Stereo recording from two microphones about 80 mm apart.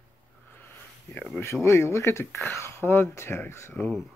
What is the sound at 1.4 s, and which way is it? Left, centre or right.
Speech, left.